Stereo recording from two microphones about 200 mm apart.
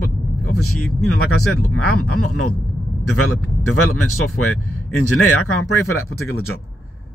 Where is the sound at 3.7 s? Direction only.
90° left.